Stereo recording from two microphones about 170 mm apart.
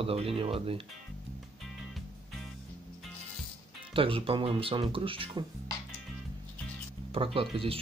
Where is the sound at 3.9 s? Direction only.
30° right (ahead or behind).